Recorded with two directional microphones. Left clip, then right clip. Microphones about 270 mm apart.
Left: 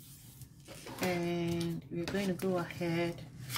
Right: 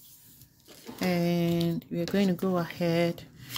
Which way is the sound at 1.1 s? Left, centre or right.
Right.